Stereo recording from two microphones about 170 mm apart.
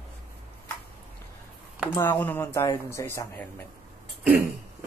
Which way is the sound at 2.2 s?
15° left (ahead or behind).